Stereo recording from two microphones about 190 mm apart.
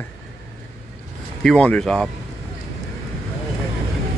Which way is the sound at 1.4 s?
5° left (ahead or behind).